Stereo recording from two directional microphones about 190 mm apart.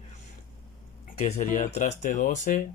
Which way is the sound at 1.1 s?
35° left (ahead or behind).